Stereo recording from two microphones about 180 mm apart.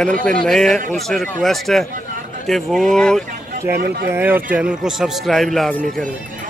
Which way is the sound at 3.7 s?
65° right (ahead or behind).